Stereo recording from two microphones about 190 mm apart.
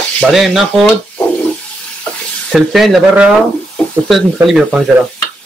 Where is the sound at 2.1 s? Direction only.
5° left (ahead or behind).